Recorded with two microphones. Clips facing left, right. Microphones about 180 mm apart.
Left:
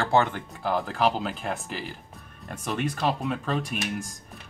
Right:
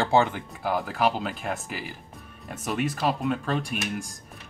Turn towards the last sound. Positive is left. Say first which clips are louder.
# even
turn(degrees=0)  # may be behind; listen again after turning